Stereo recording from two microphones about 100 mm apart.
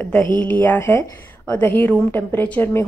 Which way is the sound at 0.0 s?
15° left (ahead or behind).